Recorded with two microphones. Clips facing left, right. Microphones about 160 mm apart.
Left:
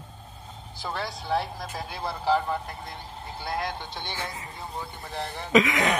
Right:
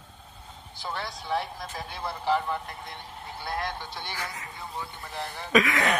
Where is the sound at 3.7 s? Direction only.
25° left (ahead or behind).